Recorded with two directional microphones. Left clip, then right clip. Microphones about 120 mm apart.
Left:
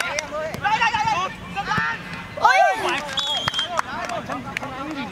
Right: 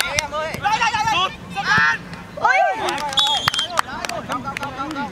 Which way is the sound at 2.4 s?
15° left (ahead or behind).